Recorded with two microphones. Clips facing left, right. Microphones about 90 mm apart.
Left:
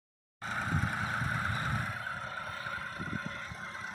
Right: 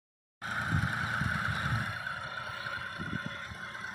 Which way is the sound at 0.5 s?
15° right (ahead or behind).